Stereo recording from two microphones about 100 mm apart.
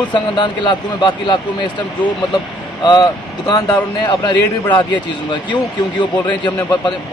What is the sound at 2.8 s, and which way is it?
Speech, 45° left (ahead or behind).